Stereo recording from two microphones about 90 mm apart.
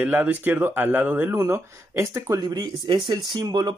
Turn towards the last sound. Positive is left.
turn(degrees=-55)  # may be behind; listen again after turning